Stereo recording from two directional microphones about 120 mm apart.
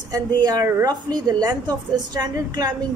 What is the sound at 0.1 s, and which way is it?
Speech, 30° right (ahead or behind).